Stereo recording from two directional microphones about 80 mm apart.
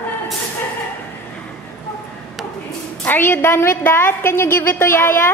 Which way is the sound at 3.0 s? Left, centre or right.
Left.